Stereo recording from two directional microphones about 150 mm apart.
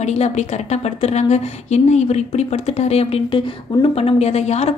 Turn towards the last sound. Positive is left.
turn(degrees=45)  # may be behind; listen again after turning